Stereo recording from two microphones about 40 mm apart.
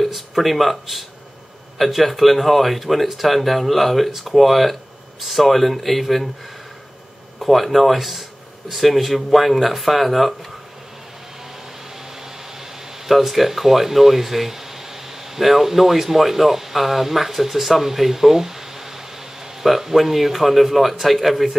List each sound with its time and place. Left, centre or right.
0.0 s speech: centre
7.3 s speech: centre
13.0 s speech: centre